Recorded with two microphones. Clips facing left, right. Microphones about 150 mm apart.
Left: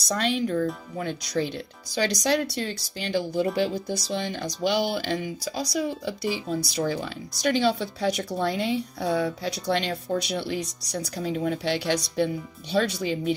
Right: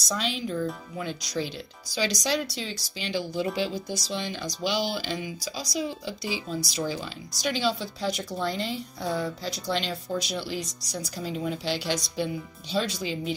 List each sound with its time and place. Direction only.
0.1 s speech: 55° left (ahead or behind)